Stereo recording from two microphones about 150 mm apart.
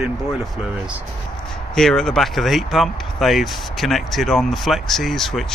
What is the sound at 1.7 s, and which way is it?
Speech, 5° left (ahead or behind).